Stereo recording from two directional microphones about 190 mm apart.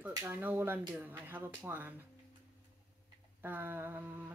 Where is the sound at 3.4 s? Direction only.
10° right (ahead or behind).